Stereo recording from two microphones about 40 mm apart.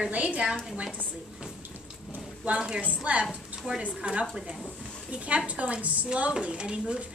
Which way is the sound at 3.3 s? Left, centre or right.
Right.